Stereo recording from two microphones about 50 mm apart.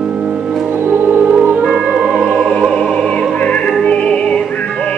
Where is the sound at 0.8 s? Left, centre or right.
Right.